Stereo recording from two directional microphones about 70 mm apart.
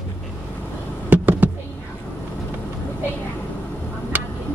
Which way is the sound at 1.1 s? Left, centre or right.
Right.